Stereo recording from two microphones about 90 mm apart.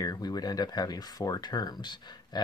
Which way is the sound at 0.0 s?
50° left (ahead or behind).